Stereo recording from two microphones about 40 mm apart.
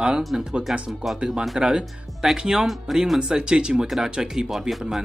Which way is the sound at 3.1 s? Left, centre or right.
Centre.